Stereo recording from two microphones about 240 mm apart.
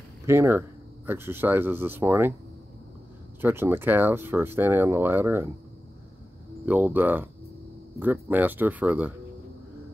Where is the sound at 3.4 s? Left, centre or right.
Centre.